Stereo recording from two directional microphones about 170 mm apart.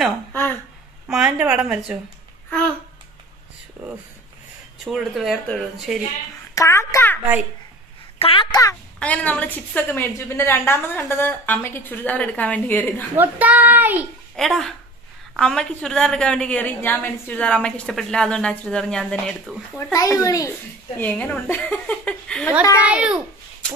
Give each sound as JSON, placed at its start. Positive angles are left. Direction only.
{"t": 0.3, "sound": "a sound", "side_deg": 10}
{"t": 1.0, "sound": "a woman's voice", "side_deg": -5}
{"t": 4.7, "sound": "a woman's voice", "side_deg": 0}
{"t": 6.5, "sound": "a woman's voice", "side_deg": 20}
{"t": 8.2, "sound": "a child's voice", "side_deg": 30}
{"t": 9.0, "sound": "a woman's voice", "side_deg": 10}
{"t": 13.1, "sound": "a child's voice", "side_deg": -10}
{"t": 14.3, "sound": "a woman's voice", "side_deg": 0}
{"t": 19.9, "sound": "a child's voice", "side_deg": 20}
{"t": 22.8, "sound": "a child's voice", "side_deg": -5}